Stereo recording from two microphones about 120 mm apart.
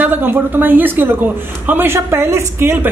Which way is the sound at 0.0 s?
15° right (ahead or behind).